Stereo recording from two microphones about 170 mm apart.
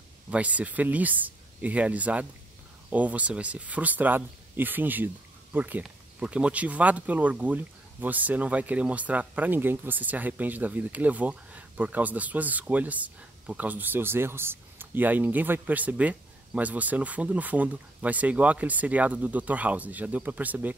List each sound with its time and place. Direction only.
0.3 s speech: 10° right (ahead or behind)